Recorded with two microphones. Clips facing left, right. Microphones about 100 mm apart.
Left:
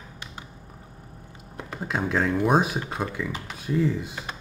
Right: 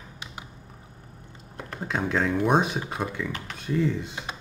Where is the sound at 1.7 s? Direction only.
5° left (ahead or behind).